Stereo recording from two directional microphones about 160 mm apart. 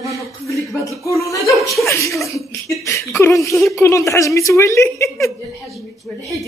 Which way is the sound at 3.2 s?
15° left (ahead or behind).